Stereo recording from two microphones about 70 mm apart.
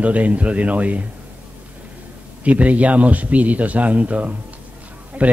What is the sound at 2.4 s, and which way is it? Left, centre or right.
Speech, right.